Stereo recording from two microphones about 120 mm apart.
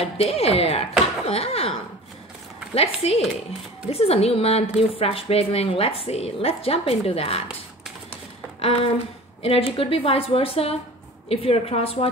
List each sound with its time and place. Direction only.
0.0 s a woman's voice: 55° left (ahead or behind)
9.4 s a woman's voice: 55° left (ahead or behind)